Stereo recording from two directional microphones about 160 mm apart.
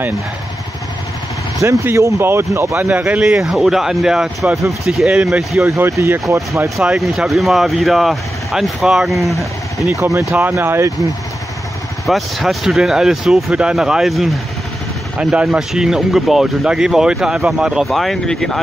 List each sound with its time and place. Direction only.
1.6 s speech: 20° right (ahead or behind)
5.6 s speech: 15° right (ahead or behind)
6.8 s speech: 5° right (ahead or behind)
9.8 s speech: 15° right (ahead or behind)
12.1 s speech: centre (ahead or behind)